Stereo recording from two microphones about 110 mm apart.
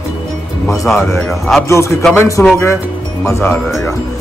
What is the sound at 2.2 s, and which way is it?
Speech, 30° left (ahead or behind).